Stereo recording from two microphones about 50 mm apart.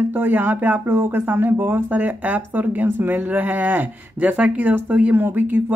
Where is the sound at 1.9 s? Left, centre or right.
Right.